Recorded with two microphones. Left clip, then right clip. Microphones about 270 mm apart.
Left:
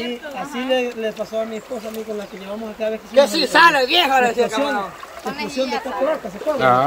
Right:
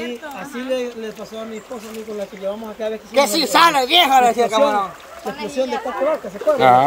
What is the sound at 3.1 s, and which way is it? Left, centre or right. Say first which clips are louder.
Speech: left 1 dB; right.